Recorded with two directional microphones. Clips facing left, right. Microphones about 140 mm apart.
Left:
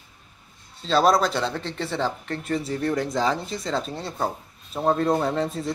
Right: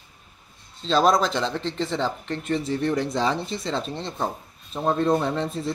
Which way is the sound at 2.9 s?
5° left (ahead or behind).